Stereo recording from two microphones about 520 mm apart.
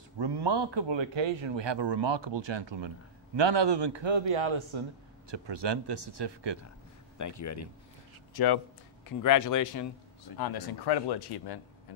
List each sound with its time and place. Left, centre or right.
0.2 s a man's voice: right
5.3 s speech: right
7.2 s speech: left
8.3 s speech: left